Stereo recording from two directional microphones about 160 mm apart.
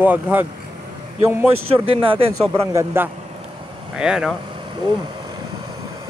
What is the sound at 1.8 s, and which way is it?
Speech, 35° right (ahead or behind).